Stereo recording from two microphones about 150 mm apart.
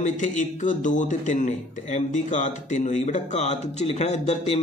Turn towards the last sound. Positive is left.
turn(degrees=45)  # may be behind; listen again after turning